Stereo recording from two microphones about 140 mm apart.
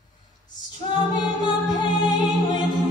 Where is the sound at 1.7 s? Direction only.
30° left (ahead or behind).